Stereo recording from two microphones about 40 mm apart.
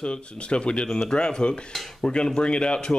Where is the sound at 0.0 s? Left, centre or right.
Left.